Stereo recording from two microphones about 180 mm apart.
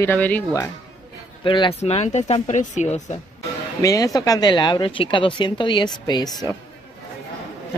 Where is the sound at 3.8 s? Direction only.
20° left (ahead or behind).